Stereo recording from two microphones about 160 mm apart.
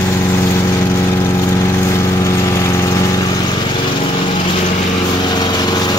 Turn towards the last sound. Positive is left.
turn(degrees=25)  # may be behind; listen again after turning